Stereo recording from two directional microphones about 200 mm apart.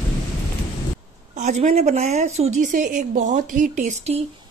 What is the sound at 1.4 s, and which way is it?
A woman's voice, 35° right (ahead or behind).